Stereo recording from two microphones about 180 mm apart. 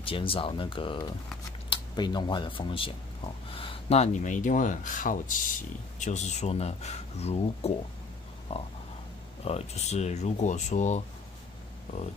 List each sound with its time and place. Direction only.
0.0 s speech: 30° left (ahead or behind)